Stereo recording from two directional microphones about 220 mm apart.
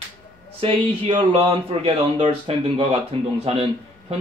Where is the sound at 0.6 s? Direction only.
25° right (ahead or behind).